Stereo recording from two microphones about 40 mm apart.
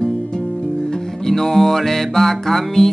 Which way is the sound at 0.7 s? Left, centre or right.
Centre.